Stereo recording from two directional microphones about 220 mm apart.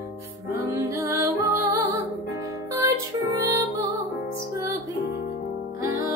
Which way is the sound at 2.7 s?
15° right (ahead or behind).